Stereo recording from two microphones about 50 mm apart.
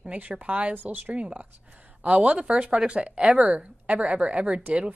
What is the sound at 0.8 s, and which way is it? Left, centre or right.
Speech, right.